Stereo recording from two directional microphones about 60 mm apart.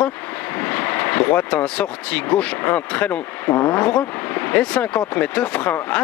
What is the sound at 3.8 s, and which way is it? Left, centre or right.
Speech, left.